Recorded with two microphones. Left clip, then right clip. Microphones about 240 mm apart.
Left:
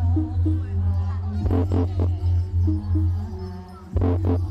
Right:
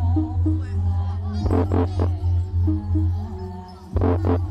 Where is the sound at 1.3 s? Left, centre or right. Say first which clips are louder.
Right 3 dB; right.